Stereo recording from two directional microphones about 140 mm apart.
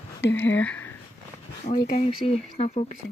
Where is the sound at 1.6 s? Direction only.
70° left (ahead or behind).